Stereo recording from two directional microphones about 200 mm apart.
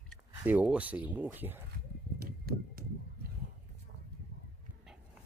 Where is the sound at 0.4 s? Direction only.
10° right (ahead or behind).